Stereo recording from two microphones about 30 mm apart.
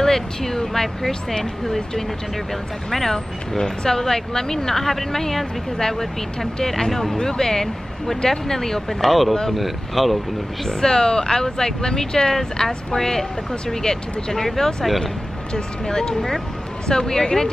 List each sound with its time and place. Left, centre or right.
0.0 s speech: centre
9.0 s speech: centre
10.6 s speech: centre
15.5 s speech: left